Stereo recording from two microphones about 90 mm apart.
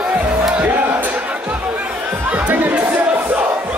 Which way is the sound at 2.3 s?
15° right (ahead or behind).